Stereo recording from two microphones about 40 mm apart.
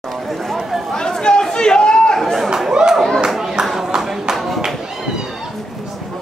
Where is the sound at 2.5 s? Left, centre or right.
Centre.